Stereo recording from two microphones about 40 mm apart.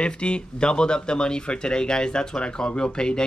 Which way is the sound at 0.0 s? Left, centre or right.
Left.